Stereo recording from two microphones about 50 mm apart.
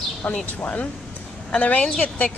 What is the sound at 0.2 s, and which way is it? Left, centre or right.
Speech, left.